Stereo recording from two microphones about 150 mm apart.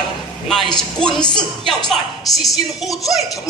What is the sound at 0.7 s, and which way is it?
A woman's voice, 5° left (ahead or behind).